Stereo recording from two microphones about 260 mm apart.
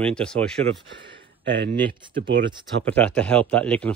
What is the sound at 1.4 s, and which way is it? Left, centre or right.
Speech, right.